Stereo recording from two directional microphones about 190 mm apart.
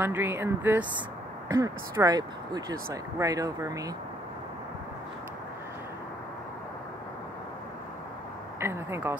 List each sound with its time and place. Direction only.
0.0 s speech: 10° right (ahead or behind)
8.5 s speech: 15° right (ahead or behind)